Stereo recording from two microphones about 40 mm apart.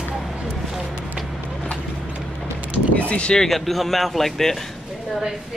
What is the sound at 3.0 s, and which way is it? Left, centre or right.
Speech, left.